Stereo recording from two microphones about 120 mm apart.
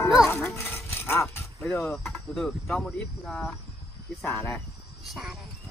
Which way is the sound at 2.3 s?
5° left (ahead or behind).